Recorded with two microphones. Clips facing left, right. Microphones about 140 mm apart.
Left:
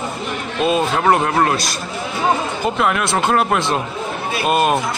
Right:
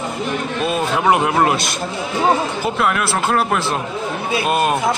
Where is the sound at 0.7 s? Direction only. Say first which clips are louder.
Left 2 dB; 5° right (ahead or behind); by 1.8 s 20° right (ahead or behind).